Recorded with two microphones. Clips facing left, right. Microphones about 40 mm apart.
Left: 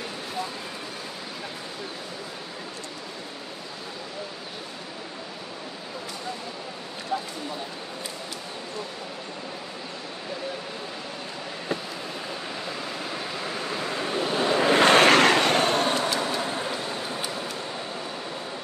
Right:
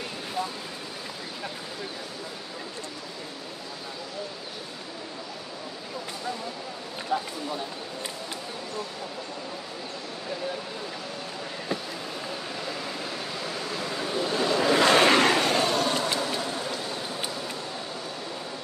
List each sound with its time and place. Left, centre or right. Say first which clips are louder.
12.5 s vehicle: left 1 dB; centre; by 14.6 s left
14.6 s vehicle: left 3 dB; left
16.2 s vehicle: left 2 dB; left